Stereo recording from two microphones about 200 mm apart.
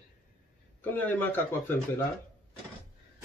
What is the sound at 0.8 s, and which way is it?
Speech, 10° left (ahead or behind).